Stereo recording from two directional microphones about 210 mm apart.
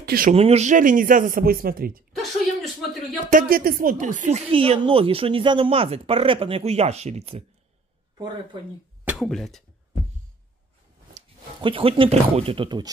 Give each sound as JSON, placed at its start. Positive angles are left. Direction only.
{"t": 0.0, "sound": "speech", "side_deg": -45}
{"t": 0.3, "sound": "speech", "side_deg": -30}
{"t": 2.1, "sound": "a sound", "side_deg": 0}
{"t": 3.3, "sound": "speech", "side_deg": -40}
{"t": 9.0, "sound": "speech", "side_deg": 0}
{"t": 11.1, "sound": "speech", "side_deg": -25}